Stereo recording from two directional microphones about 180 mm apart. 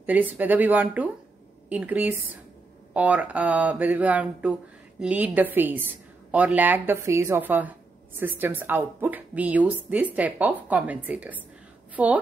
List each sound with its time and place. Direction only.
0.0 s a woman's voice: 10° right (ahead or behind)